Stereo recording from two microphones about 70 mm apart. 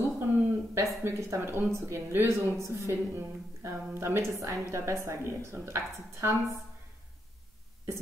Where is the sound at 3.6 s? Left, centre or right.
Right.